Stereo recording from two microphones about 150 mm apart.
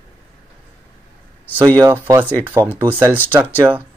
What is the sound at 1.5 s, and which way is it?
Speech, 20° right (ahead or behind).